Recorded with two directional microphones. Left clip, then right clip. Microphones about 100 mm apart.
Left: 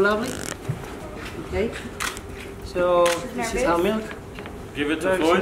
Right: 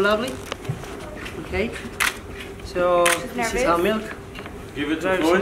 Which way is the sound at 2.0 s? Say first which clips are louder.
Right 7 dB; 45° right (ahead or behind).